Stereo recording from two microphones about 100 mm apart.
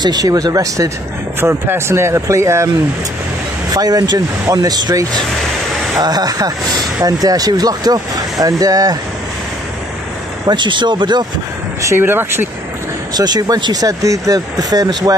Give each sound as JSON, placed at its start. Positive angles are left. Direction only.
{"t": 0.0, "sound": "speech", "side_deg": -40}
{"t": 1.4, "sound": "speech", "side_deg": -25}
{"t": 3.7, "sound": "speech", "side_deg": -40}
{"t": 10.4, "sound": "speech", "side_deg": -50}
{"t": 11.9, "sound": "speech", "side_deg": -20}
{"t": 13.1, "sound": "speech", "side_deg": -40}